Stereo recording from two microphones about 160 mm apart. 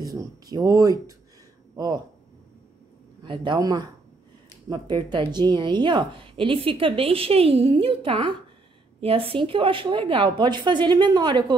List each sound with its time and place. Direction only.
0.0 s speech: 20° right (ahead or behind)
3.3 s a woman's voice: 30° right (ahead or behind)